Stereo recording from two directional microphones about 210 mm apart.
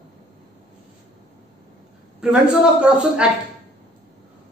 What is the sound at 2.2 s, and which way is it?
A man's voice, 5° right (ahead or behind).